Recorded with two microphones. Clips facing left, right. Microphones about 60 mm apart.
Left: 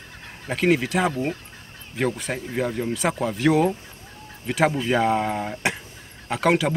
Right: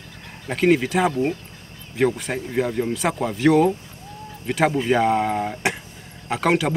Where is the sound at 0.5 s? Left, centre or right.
Centre.